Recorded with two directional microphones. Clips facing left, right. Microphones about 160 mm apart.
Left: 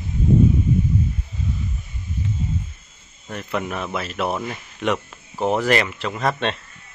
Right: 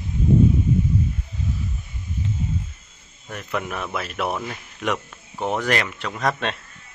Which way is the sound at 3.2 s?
Centre (ahead or behind).